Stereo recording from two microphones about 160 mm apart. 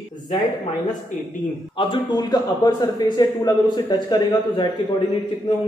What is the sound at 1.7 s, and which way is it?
A man's voice, 30° left (ahead or behind).